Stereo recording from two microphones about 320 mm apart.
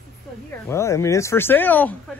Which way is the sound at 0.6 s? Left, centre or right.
Centre.